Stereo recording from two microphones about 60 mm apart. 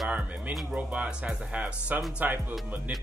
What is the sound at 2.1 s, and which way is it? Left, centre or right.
Speech, right.